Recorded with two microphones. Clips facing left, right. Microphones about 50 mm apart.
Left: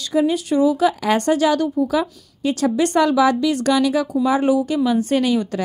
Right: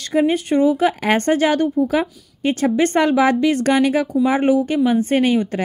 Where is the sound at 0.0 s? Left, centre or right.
Right.